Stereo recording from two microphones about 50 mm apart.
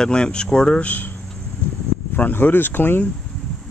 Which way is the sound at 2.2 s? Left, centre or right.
Left.